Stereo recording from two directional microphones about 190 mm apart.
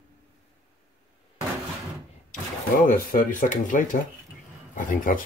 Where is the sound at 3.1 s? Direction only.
45° left (ahead or behind).